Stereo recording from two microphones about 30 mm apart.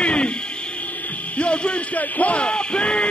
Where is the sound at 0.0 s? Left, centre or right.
Left.